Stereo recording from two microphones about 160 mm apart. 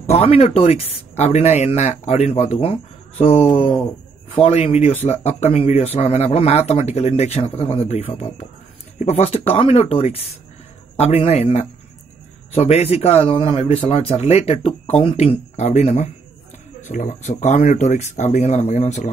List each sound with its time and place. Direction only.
0.0 s speech: 40° left (ahead or behind)